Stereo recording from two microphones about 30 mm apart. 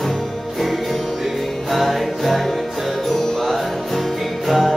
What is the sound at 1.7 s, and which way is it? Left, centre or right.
Music, centre.